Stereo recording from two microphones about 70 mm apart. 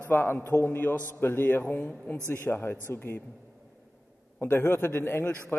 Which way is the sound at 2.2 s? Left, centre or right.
Left.